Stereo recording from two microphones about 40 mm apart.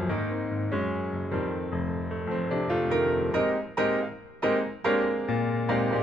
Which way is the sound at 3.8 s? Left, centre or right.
Centre.